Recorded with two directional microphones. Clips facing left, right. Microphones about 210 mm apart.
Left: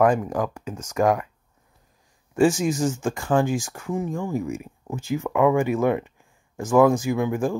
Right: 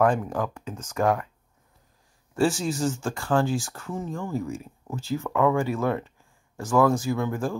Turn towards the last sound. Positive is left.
turn(degrees=15)  # may be behind; listen again after turning